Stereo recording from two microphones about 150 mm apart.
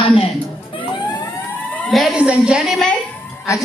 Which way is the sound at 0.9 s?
25° left (ahead or behind).